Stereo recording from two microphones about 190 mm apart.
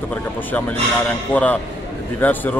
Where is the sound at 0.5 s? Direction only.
5° left (ahead or behind).